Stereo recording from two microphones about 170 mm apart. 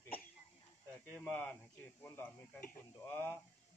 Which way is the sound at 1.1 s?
10° left (ahead or behind).